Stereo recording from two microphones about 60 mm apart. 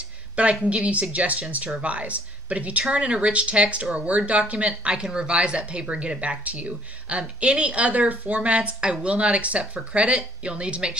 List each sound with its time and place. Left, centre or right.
0.7 s speech: right